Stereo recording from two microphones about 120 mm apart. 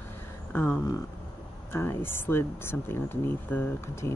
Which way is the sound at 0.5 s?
15° left (ahead or behind).